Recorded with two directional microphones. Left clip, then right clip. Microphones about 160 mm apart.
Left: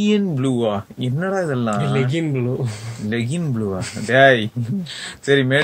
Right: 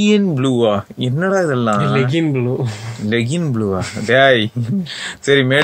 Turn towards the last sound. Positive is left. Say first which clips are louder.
# right 3 dB
turn(degrees=-30)  # may be behind; listen again after turning